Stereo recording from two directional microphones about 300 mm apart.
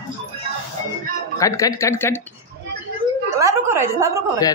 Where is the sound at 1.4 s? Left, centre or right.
Centre.